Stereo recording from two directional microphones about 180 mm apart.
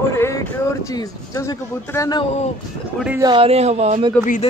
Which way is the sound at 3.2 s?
25° right (ahead or behind).